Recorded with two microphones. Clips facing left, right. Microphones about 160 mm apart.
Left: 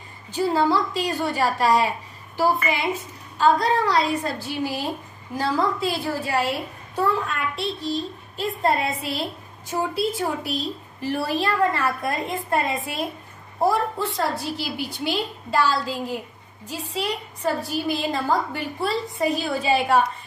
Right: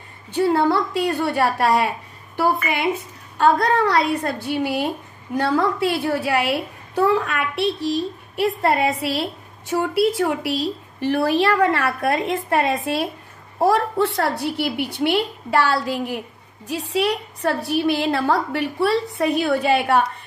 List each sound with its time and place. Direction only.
0.3 s a woman's voice: 60° right (ahead or behind)